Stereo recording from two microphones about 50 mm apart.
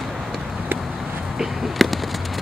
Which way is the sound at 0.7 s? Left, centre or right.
Right.